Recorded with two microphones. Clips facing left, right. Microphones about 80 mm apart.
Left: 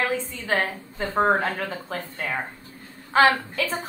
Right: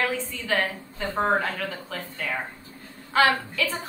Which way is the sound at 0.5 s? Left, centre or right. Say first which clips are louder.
Left 1 dB; left.